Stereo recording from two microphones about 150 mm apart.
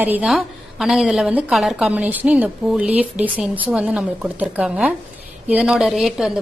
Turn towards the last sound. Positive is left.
turn(degrees=0)  # may be behind; listen again after turning